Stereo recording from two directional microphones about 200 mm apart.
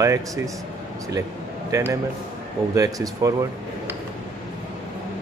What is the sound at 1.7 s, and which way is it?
Speech, 10° right (ahead or behind).